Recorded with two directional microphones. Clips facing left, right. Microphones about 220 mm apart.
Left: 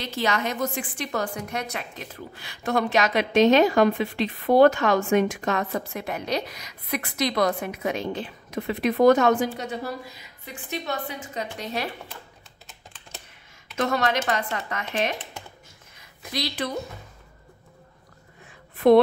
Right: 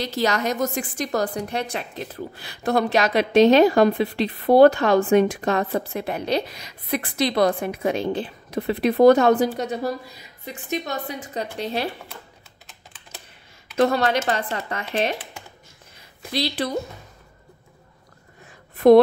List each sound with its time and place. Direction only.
0.0 s a woman's voice: 40° right (ahead or behind)
13.7 s a woman's voice: 30° right (ahead or behind)
16.2 s a woman's voice: 30° right (ahead or behind)